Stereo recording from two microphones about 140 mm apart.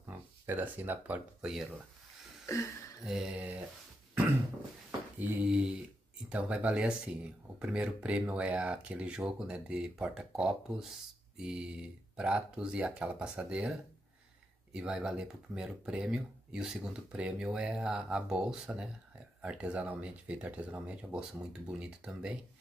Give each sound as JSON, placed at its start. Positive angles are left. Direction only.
{"t": 0.0, "sound": "speech", "side_deg": -15}
{"t": 2.4, "sound": "a sound", "side_deg": 20}
{"t": 3.1, "sound": "speech", "side_deg": -5}
{"t": 5.2, "sound": "speech", "side_deg": -10}